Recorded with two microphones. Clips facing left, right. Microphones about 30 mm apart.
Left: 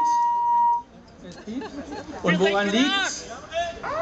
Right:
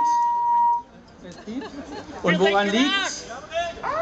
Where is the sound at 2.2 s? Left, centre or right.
Centre.